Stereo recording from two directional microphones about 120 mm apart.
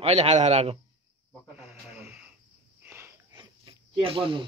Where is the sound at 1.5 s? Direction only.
10° right (ahead or behind).